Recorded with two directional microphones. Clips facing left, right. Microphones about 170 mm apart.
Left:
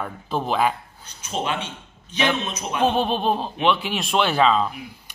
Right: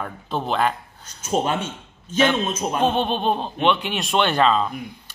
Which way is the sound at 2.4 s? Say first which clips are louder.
Right 5 dB; 45° right (ahead or behind).